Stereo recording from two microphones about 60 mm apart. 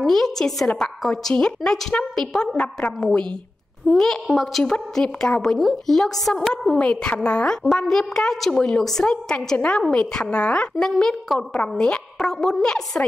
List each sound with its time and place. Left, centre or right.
0.0 s a woman's voice: centre
6.8 s a woman's voice: centre